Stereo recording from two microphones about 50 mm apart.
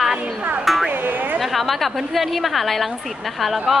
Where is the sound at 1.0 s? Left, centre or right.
Right.